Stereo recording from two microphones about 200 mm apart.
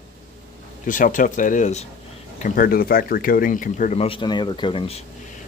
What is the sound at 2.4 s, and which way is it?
Speech, 45° left (ahead or behind).